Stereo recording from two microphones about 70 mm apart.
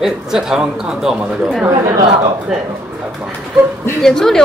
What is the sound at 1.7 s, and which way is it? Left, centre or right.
Speech, right.